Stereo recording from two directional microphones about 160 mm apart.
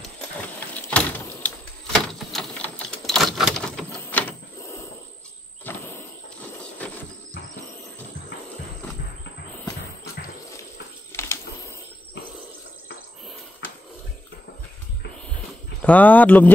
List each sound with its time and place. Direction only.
0.6 s sliding door: 10° left (ahead or behind)
11.1 s pigeon: 15° left (ahead or behind)
15.8 s speech: 10° left (ahead or behind)